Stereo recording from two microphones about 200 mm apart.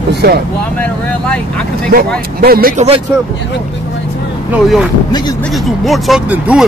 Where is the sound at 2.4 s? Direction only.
50° right (ahead or behind).